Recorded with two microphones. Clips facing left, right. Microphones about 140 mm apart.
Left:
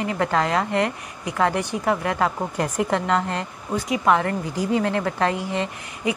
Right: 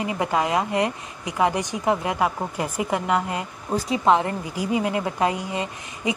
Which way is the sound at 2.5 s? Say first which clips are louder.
Left 2 dB; 5° right (ahead or behind).